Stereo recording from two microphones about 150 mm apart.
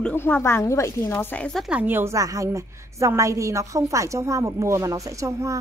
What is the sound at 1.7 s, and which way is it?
A woman's voice, 10° right (ahead or behind).